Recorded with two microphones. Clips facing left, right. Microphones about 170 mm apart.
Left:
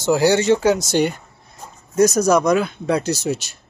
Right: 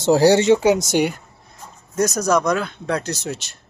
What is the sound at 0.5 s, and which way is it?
Speech, 15° right (ahead or behind).